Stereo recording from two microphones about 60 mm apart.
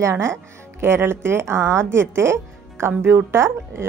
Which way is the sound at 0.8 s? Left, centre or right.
Right.